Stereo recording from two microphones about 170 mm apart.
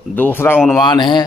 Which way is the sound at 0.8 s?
25° left (ahead or behind).